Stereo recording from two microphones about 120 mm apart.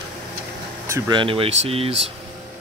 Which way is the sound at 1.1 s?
45° right (ahead or behind).